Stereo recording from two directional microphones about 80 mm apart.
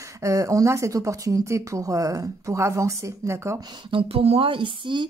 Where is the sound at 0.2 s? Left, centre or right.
Right.